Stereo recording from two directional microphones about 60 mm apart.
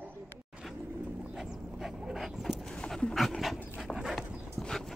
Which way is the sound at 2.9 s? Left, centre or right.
Centre.